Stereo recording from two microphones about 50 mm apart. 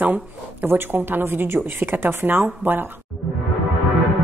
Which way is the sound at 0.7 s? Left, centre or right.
Right.